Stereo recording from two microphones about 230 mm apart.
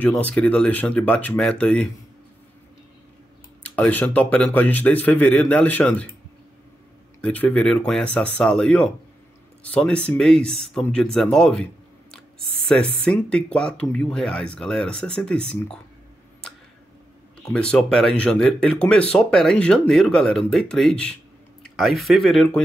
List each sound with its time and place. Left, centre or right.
0.0 s speech: centre
3.6 s speech: centre
7.2 s speech: centre
12.6 s speech: centre
17.5 s speech: centre